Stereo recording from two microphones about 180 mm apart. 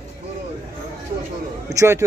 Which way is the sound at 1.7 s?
15° right (ahead or behind).